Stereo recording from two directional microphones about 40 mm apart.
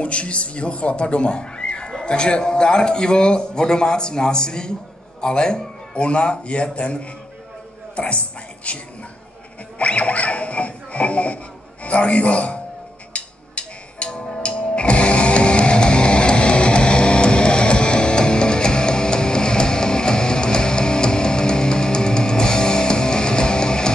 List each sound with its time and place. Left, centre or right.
0.0 s a man's voice: left
13.1 s music: left